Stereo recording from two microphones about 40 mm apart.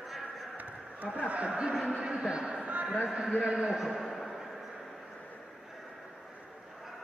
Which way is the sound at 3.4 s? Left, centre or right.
Centre.